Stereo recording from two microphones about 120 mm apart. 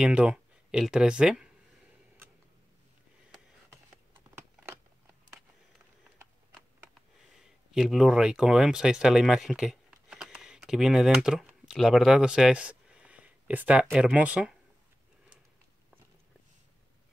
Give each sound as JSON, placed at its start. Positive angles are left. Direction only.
{"t": 0.0, "sound": "speech", "side_deg": -10}
{"t": 4.4, "sound": "computer keyboard", "side_deg": -15}
{"t": 7.2, "sound": "speech", "side_deg": 0}